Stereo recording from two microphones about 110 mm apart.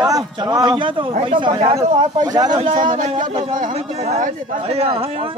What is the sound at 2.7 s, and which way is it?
Speech, 60° right (ahead or behind).